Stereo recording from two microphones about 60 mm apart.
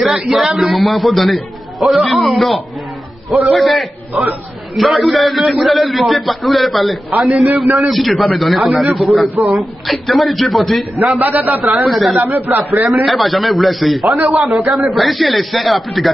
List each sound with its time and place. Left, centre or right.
0.3 s a man's voice: centre
11.1 s a man's voice: right
11.7 s a man's voice: centre
12.5 s a man's voice: centre
12.8 s a man's voice: centre